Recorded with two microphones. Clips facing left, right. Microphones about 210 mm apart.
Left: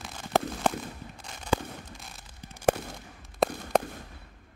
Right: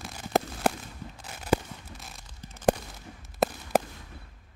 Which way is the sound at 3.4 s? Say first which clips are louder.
Even; centre (ahead or behind).